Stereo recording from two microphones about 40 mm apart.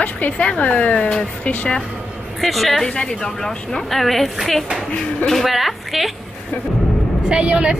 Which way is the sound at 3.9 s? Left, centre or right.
Centre.